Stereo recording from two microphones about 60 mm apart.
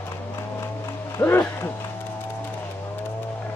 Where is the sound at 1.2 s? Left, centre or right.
Left.